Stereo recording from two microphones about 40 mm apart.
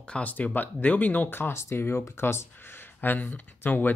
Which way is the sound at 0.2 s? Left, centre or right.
Left.